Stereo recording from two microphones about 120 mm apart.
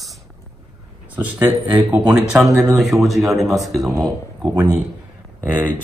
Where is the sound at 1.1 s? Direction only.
10° right (ahead or behind).